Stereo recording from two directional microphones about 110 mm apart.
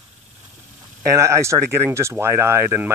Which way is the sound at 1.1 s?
25° right (ahead or behind).